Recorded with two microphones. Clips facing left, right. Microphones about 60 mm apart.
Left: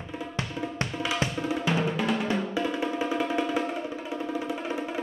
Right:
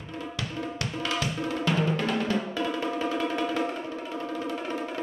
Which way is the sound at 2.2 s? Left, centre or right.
Centre.